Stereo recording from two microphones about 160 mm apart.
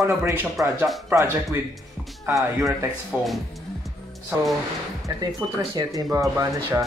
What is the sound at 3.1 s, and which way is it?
Speech, 10° right (ahead or behind).